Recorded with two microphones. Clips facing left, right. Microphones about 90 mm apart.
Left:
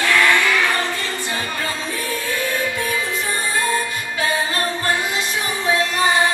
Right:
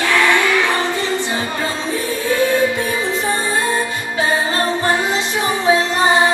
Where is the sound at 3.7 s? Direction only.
25° right (ahead or behind).